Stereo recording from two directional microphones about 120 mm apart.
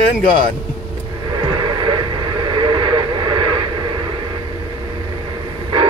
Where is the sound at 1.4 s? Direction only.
40° right (ahead or behind).